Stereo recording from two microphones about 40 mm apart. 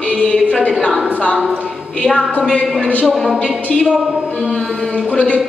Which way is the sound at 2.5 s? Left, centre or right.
Left.